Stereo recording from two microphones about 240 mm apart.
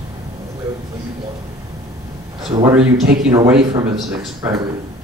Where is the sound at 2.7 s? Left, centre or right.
Centre.